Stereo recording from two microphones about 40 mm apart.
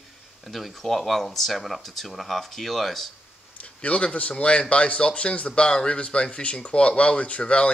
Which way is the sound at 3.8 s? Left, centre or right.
Left.